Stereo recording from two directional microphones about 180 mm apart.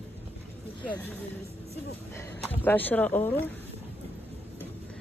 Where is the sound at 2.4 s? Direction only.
10° left (ahead or behind).